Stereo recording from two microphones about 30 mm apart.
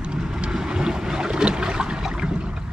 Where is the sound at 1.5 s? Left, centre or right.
Right.